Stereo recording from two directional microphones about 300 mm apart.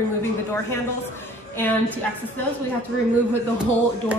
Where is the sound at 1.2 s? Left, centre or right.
Centre.